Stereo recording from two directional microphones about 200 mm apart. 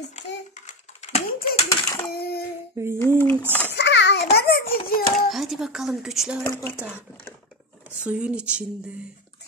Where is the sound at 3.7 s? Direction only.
60° left (ahead or behind).